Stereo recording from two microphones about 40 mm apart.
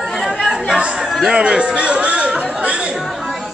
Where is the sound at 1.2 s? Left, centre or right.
Right.